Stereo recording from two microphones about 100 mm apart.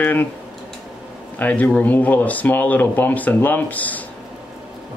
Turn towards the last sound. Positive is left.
turn(degrees=15)  # may be behind; listen again after turning